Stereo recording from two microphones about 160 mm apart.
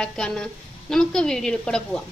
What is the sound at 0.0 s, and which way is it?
A woman's voice, 5° left (ahead or behind).